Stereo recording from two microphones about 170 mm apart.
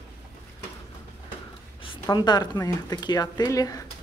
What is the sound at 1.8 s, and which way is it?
Speech, 25° left (ahead or behind).